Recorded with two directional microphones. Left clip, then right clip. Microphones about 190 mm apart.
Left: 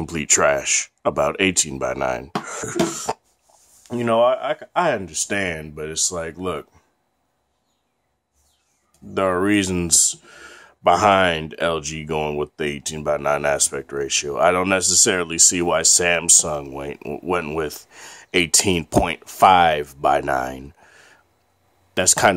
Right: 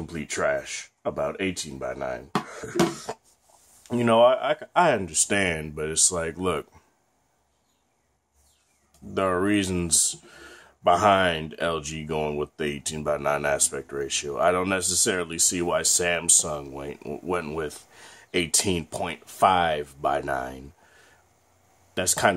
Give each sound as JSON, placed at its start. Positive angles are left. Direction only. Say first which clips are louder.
{"t": 0.0, "sound": "speech", "louder": "left 9 dB", "side_deg": 40}
{"t": 3.8, "sound": "speech", "louder": "left 1 dB", "side_deg": 10}
{"t": 9.1, "sound": "speech", "louder": "left 5 dB", "side_deg": 25}